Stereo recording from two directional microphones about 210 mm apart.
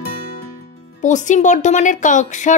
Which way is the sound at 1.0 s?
35° left (ahead or behind).